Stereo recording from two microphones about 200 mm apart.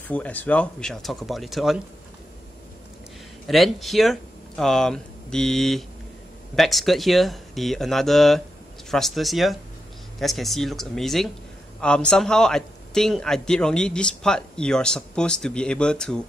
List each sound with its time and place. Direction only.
0.1 s a man's voice: 5° left (ahead or behind)
3.4 s a man's voice: centre (ahead or behind)